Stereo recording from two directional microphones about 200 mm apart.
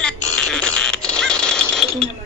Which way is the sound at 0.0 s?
5° left (ahead or behind).